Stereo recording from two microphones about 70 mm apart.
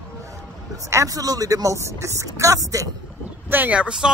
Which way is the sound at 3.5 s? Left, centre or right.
Right.